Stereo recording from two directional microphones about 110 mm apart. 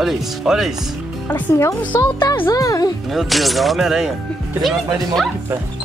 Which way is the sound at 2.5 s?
30° left (ahead or behind).